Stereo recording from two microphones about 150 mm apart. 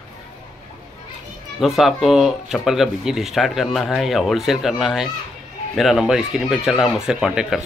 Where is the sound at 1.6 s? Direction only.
Centre (ahead or behind).